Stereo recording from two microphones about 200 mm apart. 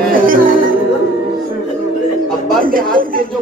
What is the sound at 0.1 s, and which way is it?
Music, 45° right (ahead or behind).